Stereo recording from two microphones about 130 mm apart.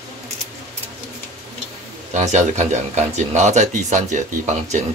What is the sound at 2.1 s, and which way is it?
Speech, 65° right (ahead or behind).